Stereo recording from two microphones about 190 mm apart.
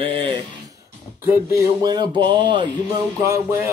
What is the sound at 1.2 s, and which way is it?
Speech, 10° right (ahead or behind).